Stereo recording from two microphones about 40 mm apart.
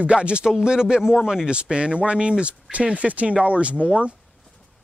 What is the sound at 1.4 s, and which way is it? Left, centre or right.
Speech, right.